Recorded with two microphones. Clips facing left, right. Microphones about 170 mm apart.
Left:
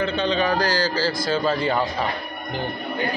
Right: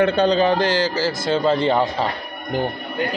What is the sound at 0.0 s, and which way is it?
Speech, 45° right (ahead or behind).